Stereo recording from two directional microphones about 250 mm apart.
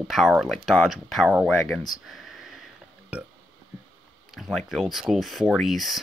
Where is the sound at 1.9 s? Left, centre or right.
Centre.